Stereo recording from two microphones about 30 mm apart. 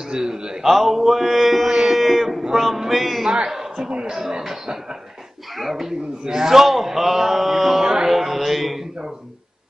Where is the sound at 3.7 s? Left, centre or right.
Right.